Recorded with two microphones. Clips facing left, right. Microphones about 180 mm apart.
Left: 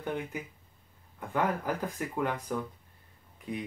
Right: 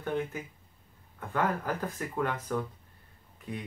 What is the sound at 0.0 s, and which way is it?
Speech, 15° left (ahead or behind).